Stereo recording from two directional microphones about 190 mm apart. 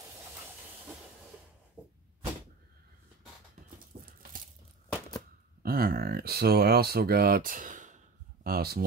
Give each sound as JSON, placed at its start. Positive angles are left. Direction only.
{"t": 1.8, "sound": "cupboard open or close", "side_deg": -5}
{"t": 3.9, "sound": "dog", "side_deg": -50}
{"t": 5.6, "sound": "speech", "side_deg": -50}
{"t": 8.5, "sound": "speech", "side_deg": -55}